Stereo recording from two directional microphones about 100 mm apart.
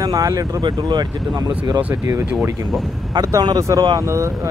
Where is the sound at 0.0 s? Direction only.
40° right (ahead or behind).